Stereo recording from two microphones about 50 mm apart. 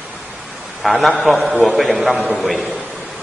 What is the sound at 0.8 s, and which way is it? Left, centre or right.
A man's voice, centre.